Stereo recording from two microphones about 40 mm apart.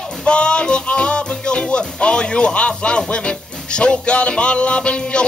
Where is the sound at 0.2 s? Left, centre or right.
Left.